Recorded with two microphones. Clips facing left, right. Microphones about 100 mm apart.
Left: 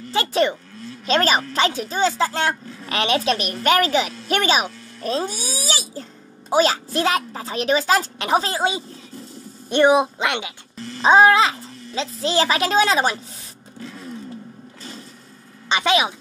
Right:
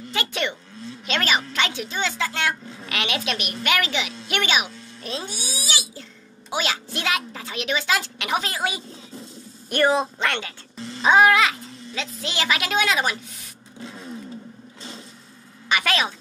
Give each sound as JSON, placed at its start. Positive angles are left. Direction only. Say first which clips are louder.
{"t": 0.1, "sound": "a child's voice", "louder": "left 8 dB", "side_deg": 35}
{"t": 11.0, "sound": "a child's voice", "louder": "left 3 dB", "side_deg": 30}
{"t": 13.7, "sound": "a sound", "louder": "left 2 dB", "side_deg": -25}
{"t": 15.7, "sound": "a woman's voice", "louder": "left 4 dB", "side_deg": 20}